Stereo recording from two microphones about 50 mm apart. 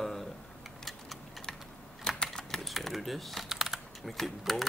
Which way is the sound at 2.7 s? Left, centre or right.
Centre.